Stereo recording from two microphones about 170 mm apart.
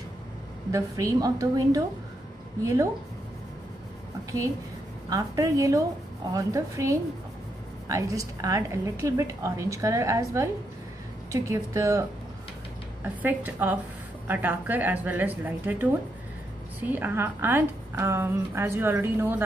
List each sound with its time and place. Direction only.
0.7 s a woman's voice: 20° right (ahead or behind)
5.1 s a woman's voice: 20° right (ahead or behind)